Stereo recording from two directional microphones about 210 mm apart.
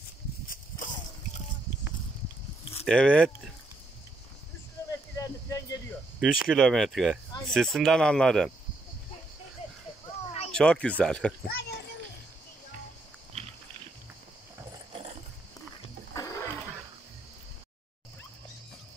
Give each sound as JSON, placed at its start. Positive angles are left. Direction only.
{"t": 0.5, "sound": "a sound", "side_deg": 40}
{"t": 2.8, "sound": "speech", "side_deg": 5}
{"t": 5.1, "sound": "cricket", "side_deg": 15}
{"t": 6.1, "sound": "speech", "side_deg": -5}
{"t": 10.5, "sound": "speech", "side_deg": 5}
{"t": 11.4, "sound": "a child's voice", "side_deg": 50}
{"t": 16.2, "sound": "roaring cats", "side_deg": 15}